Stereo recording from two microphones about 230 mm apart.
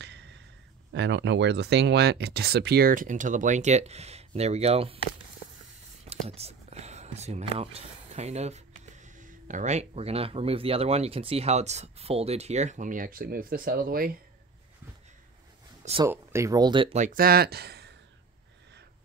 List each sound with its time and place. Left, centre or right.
0.0 s a sound: right
0.9 s speech: right
6.0 s speech: right
15.8 s speech: right
16.1 s speech: centre; by 17.9 s right